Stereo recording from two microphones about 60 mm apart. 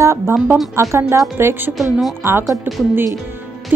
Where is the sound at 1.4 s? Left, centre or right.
Right.